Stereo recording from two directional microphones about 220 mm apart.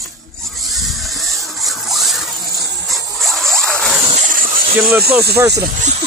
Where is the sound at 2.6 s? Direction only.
50° right (ahead or behind).